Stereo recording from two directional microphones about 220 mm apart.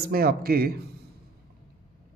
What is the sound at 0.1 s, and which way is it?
Speech, 40° right (ahead or behind).